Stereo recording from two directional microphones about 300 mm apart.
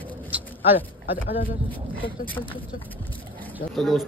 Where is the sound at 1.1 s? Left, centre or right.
Left.